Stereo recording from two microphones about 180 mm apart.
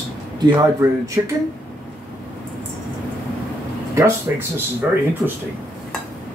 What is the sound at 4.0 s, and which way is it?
Speech, 15° right (ahead or behind).